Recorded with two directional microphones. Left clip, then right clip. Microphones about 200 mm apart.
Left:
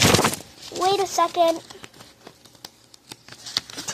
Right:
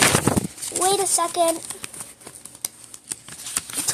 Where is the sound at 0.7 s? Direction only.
10° right (ahead or behind).